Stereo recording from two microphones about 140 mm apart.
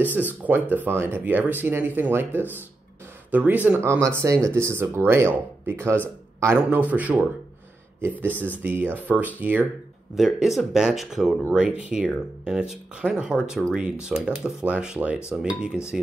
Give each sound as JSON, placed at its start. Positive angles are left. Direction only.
{"t": 0.0, "sound": "speech", "side_deg": -10}